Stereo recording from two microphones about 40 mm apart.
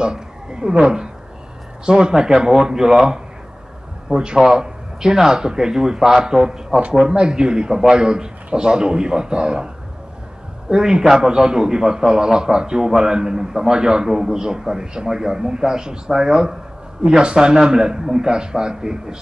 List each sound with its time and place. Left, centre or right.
0.0 s a woman's voice: right
10.7 s a man's voice: centre